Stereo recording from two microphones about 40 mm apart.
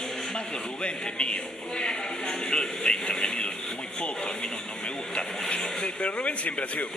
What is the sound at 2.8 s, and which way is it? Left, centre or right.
Speech, centre.